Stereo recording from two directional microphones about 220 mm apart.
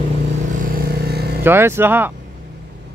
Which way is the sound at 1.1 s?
45° right (ahead or behind).